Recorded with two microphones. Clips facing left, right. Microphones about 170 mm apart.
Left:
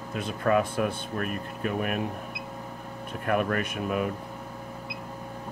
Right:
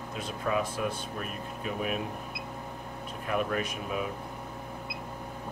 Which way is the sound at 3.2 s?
55° left (ahead or behind).